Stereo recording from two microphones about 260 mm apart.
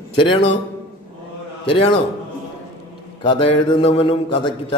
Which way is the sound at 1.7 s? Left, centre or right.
Centre.